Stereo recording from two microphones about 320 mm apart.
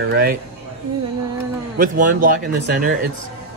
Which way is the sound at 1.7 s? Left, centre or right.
Right.